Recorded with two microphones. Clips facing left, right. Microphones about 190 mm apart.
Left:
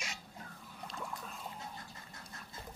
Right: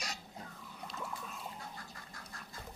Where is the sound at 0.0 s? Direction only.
40° right (ahead or behind).